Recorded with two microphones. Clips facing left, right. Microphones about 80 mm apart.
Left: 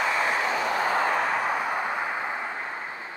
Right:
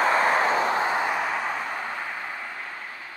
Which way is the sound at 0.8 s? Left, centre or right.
Right.